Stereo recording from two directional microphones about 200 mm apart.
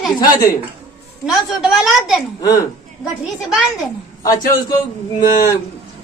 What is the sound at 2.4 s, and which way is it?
Speech, 15° left (ahead or behind).